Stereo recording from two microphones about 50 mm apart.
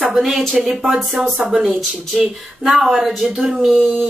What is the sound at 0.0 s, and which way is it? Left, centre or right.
Speech, centre.